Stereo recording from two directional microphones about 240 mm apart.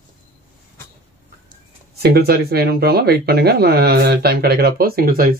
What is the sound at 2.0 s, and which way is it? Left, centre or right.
Speech, right.